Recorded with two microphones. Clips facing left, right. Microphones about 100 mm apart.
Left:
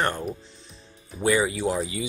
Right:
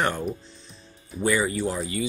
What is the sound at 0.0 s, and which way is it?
Speech, centre (ahead or behind).